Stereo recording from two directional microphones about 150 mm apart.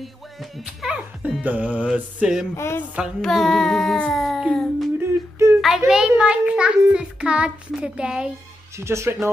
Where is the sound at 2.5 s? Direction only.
15° left (ahead or behind).